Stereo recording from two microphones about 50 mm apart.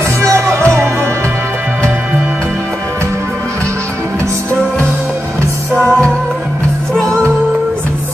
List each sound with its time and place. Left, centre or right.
0.2 s music: right
5.7 s music: left